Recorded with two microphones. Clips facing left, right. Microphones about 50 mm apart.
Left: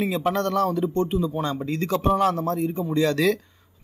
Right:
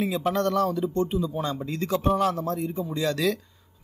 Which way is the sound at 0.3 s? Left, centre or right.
Left.